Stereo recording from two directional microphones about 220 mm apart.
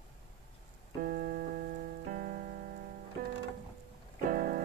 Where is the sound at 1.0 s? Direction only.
40° right (ahead or behind).